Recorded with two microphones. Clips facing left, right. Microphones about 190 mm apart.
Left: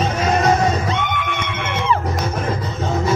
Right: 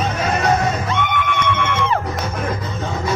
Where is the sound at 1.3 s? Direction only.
55° right (ahead or behind).